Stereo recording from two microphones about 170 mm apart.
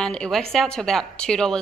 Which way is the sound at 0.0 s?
5° left (ahead or behind).